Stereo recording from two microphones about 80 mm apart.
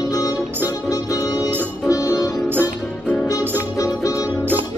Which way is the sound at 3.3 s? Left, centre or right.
Left.